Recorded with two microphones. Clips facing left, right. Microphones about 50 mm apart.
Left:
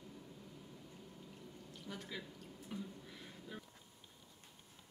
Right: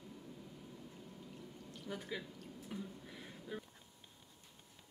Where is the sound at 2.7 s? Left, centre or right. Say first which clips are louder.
Even; centre.